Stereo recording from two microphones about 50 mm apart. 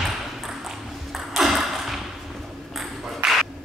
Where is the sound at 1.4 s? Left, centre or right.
Centre.